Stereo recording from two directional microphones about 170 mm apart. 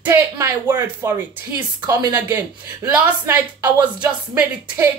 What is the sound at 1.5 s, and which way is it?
Speech, 25° right (ahead or behind).